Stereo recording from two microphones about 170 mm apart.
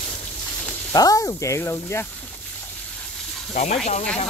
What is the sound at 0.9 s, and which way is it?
Speech, 20° left (ahead or behind).